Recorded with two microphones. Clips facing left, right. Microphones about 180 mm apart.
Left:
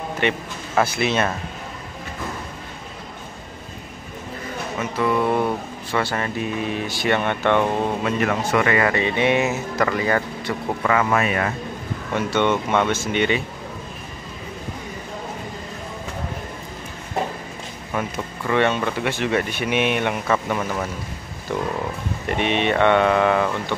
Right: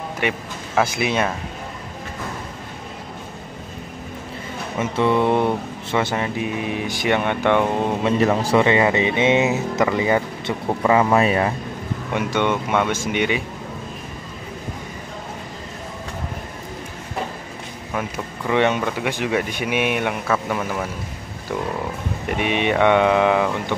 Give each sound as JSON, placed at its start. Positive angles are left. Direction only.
{"t": 0.2, "sound": "speech", "side_deg": -5}
{"t": 4.7, "sound": "speech", "side_deg": -25}
{"t": 8.0, "sound": "speech", "side_deg": -30}
{"t": 12.1, "sound": "speech", "side_deg": -10}
{"t": 17.9, "sound": "speech", "side_deg": -10}
{"t": 22.3, "sound": "speech", "side_deg": -10}